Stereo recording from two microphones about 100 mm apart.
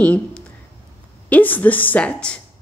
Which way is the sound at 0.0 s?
15° left (ahead or behind).